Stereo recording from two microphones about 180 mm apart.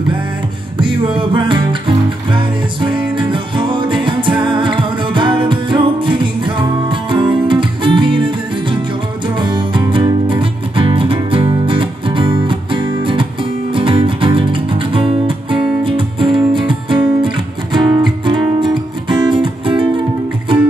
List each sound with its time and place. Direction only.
0.7 s music: 25° right (ahead or behind)
9.4 s music: 25° right (ahead or behind)